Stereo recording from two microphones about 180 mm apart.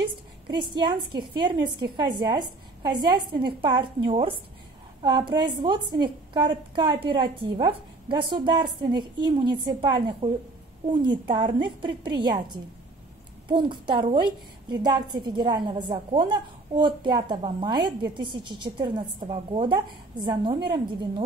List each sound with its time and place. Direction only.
0.5 s a woman's voice: 25° right (ahead or behind)
13.5 s a woman's voice: 25° right (ahead or behind)